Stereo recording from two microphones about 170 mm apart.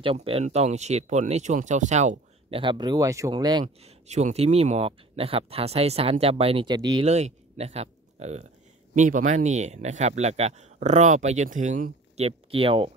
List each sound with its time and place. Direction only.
0.0 s speech: 35° right (ahead or behind)
2.6 s speech: 25° right (ahead or behind)
3.6 s speech: 40° right (ahead or behind); by 7.1 s 25° right (ahead or behind)
7.1 s speech: 40° right (ahead or behind)